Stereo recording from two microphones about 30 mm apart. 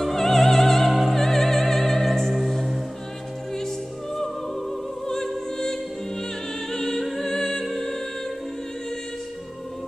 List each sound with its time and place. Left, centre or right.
0.0 s opera: centre
1.1 s music: centre
3.5 s opera: centre
5.0 s music: centre